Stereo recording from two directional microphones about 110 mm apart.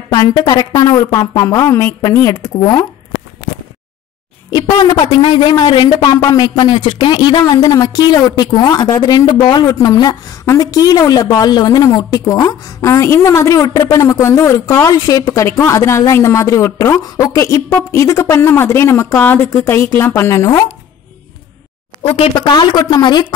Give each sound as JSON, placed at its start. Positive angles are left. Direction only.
{"t": 0.1, "sound": "a man's voice", "side_deg": 35}
{"t": 4.5, "sound": "a man's voice", "side_deg": 40}
{"t": 22.4, "sound": "a man's voice", "side_deg": 45}